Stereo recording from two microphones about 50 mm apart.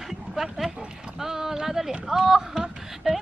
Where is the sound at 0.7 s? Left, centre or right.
Centre.